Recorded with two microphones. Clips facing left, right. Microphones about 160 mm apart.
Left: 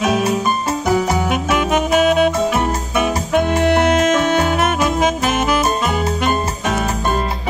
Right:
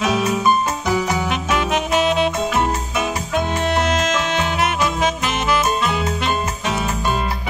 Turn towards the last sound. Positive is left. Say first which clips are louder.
# left 3 dB
turn(degrees=50)  # may be behind; listen again after turning